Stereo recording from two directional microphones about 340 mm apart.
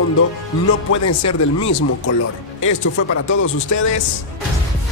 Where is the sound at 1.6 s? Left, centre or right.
Left.